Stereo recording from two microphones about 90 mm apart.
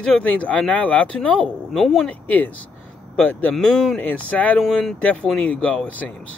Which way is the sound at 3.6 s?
5° left (ahead or behind).